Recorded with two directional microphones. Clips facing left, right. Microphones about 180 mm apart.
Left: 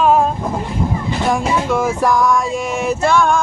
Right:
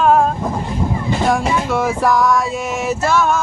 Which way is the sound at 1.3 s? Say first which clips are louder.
Left 3 dB; centre (ahead or behind).